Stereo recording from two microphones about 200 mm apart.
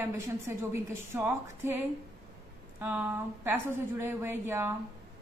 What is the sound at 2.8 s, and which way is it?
A woman's voice, 10° right (ahead or behind).